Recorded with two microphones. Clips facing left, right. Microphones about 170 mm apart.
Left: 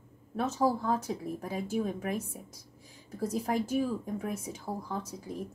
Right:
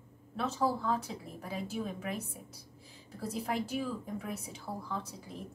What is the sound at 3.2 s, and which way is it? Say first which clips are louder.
A woman's voice: left 4 dB; 45° left (ahead or behind).